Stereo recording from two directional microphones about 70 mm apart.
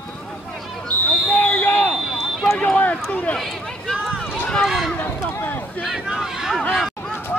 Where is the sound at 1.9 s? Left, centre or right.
Centre.